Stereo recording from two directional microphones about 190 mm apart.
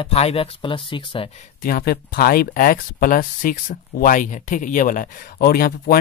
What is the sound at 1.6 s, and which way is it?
Speech, 50° left (ahead or behind).